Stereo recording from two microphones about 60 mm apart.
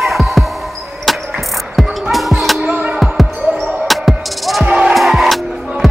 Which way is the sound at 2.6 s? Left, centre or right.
Right.